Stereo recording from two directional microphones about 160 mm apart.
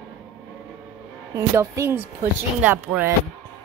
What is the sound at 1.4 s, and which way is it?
Speech, 15° right (ahead or behind).